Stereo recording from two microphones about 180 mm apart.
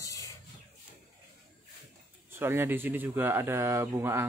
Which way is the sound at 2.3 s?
10° right (ahead or behind).